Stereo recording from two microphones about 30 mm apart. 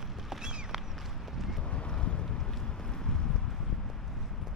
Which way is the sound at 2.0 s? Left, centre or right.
Left.